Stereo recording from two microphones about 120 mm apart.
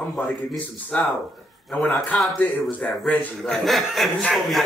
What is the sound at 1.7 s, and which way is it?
Speech, 10° left (ahead or behind).